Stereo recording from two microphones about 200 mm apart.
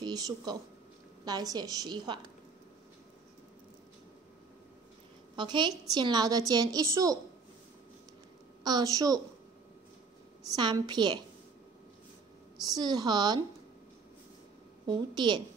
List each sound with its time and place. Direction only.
0.0 s a woman's voice: 20° right (ahead or behind)
5.3 s a woman's voice: 25° right (ahead or behind)
8.6 s a woman's voice: 20° right (ahead or behind)
10.5 s a woman's voice: 20° right (ahead or behind)
12.6 s a woman's voice: 20° right (ahead or behind)
14.9 s a woman's voice: 20° right (ahead or behind)